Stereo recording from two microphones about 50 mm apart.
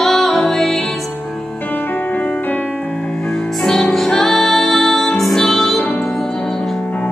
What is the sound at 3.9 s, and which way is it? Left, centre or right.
Music, centre.